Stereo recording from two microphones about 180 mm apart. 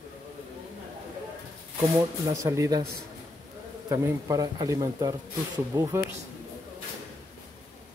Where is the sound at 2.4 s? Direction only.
20° right (ahead or behind).